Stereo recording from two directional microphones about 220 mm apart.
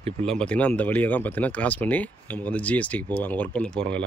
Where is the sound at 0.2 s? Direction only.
5° left (ahead or behind).